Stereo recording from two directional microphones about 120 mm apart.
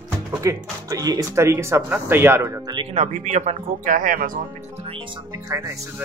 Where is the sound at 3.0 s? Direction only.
70° right (ahead or behind).